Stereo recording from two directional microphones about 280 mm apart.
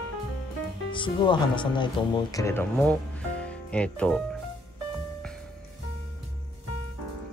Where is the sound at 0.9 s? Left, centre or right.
Centre.